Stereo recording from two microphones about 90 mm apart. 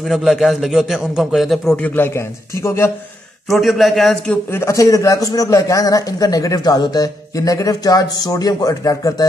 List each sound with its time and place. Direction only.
0.0 s a man's voice: centre (ahead or behind)
1.8 s a man's voice: 25° left (ahead or behind)
3.4 s a man's voice: centre (ahead or behind)
4.5 s a man's voice: 30° left (ahead or behind)